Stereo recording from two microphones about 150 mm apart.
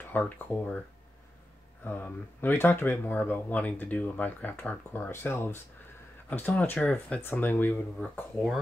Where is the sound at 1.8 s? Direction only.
10° left (ahead or behind).